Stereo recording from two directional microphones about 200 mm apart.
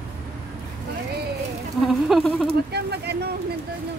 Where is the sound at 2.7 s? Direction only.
55° right (ahead or behind).